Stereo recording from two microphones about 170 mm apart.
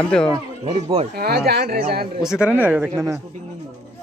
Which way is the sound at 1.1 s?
70° right (ahead or behind).